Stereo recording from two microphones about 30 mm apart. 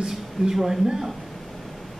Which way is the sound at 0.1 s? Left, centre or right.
Centre.